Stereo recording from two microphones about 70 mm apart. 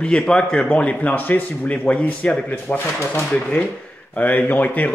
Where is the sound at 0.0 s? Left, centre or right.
Centre.